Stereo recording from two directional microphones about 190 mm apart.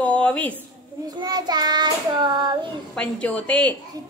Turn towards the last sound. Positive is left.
turn(degrees=5)  # may be behind; listen again after turning